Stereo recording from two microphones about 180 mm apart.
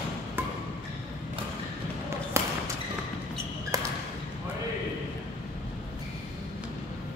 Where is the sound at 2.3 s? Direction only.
15° right (ahead or behind).